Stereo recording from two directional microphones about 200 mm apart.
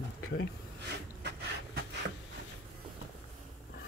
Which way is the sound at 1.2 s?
60° right (ahead or behind).